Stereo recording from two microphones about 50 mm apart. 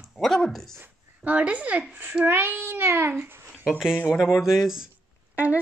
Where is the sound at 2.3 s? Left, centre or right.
Right.